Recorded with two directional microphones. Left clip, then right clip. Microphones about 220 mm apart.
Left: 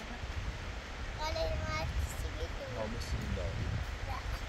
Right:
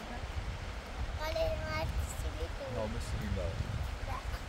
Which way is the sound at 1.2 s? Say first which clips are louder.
Right 2 dB; 25° right (ahead or behind).